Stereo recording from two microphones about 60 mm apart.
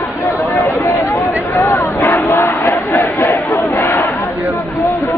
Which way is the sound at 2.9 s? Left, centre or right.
Left.